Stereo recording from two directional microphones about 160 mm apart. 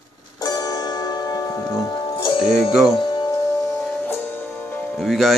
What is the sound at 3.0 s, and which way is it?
Music, 25° left (ahead or behind).